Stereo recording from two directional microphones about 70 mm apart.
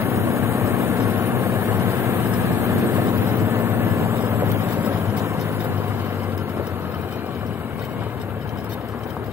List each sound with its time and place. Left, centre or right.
0.0 s vehicle: right